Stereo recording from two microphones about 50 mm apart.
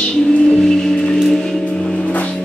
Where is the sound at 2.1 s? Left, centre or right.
Left.